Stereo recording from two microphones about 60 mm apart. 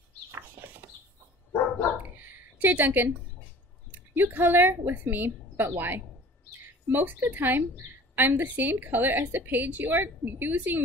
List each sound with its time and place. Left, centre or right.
0.3 s chicken: right
2.1 s a sound: right
4.3 s a woman's voice: right